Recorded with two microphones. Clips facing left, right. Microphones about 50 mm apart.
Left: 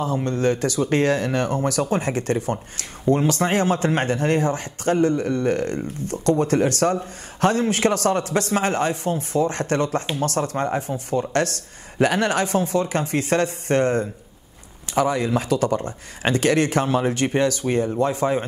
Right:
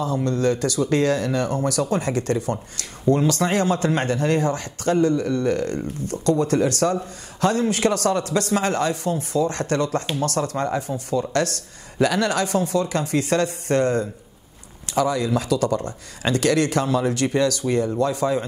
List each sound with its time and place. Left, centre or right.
0.0 s speech: left